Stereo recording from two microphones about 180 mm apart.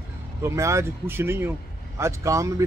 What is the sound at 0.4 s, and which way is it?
Speech, 15° right (ahead or behind).